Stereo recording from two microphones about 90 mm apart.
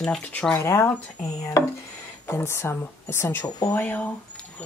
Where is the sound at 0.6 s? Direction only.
30° left (ahead or behind).